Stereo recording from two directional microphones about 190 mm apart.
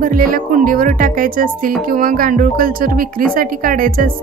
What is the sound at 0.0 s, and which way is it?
Speech, 45° right (ahead or behind).